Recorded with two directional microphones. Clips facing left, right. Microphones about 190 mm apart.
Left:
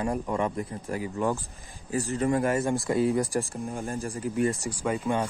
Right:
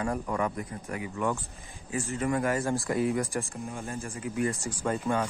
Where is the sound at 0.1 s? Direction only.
15° left (ahead or behind).